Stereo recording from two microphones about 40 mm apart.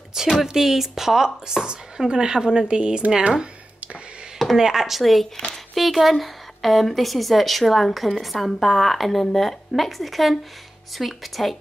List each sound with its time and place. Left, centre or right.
0.1 s speech: centre; by 3.1 s right
4.6 s speech: centre